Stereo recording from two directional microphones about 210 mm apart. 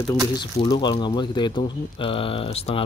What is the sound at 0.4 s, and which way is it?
Speech, 20° left (ahead or behind).